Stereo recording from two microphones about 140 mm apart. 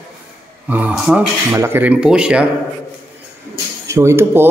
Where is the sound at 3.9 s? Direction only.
20° right (ahead or behind).